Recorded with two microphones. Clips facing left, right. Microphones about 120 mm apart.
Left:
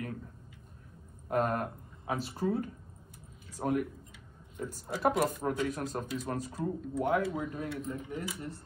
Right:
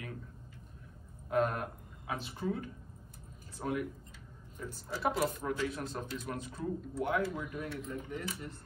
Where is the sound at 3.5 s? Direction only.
45° left (ahead or behind); by 8.3 s 30° left (ahead or behind).